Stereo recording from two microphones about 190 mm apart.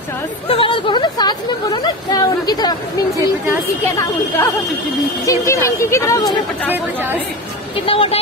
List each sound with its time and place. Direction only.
0.5 s speech: 25° left (ahead or behind)
5.2 s speech: 15° left (ahead or behind)
7.8 s speech: 30° left (ahead or behind)